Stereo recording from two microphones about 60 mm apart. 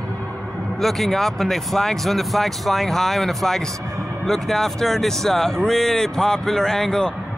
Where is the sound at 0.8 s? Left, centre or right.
Centre.